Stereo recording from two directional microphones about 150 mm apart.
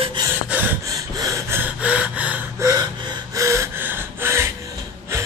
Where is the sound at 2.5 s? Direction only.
25° right (ahead or behind).